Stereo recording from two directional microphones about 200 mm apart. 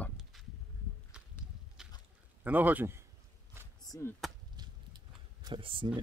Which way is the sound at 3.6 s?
10° right (ahead or behind).